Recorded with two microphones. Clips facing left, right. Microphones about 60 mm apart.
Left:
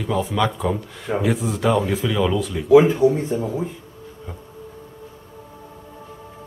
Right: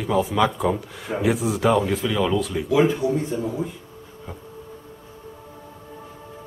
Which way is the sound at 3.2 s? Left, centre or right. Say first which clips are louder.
Left 2 dB; left.